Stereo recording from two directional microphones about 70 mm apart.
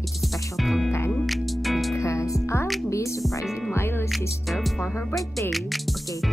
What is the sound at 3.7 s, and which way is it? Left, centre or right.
Music, left.